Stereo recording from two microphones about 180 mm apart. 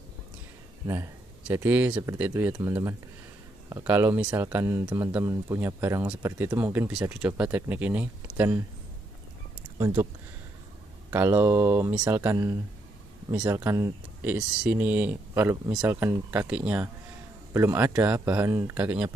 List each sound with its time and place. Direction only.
0.8 s speech: 15° right (ahead or behind)
9.8 s speech: 15° right (ahead or behind)
11.1 s speech: 10° right (ahead or behind)